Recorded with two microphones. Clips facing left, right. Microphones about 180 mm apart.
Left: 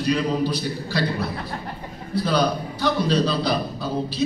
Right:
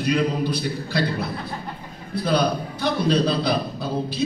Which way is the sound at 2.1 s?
55° right (ahead or behind).